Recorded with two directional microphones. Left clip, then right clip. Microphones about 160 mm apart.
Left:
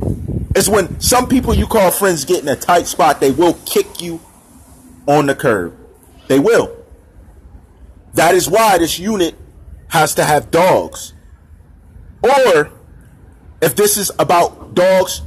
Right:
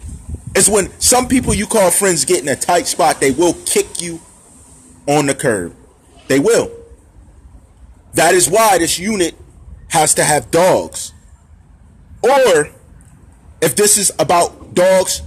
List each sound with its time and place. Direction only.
0.6 s a man's voice: 20° right (ahead or behind)
8.5 s speech: 20° right (ahead or behind)
12.2 s speech: 20° right (ahead or behind)
13.7 s speech: 20° right (ahead or behind)